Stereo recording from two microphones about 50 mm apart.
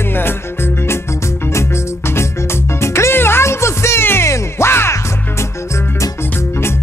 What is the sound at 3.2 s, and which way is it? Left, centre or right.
Music, left.